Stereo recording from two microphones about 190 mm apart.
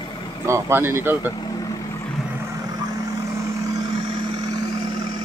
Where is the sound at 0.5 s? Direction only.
10° right (ahead or behind).